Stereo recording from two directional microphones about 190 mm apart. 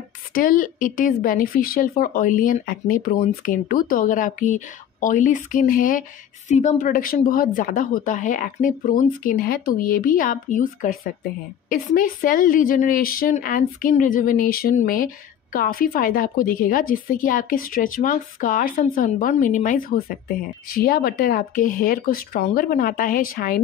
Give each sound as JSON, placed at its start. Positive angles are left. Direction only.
{"t": 0.3, "sound": "speech", "side_deg": 45}